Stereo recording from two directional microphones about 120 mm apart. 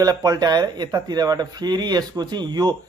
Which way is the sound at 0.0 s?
30° right (ahead or behind).